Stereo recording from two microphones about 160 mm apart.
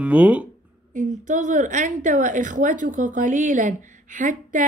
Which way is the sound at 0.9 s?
50° right (ahead or behind).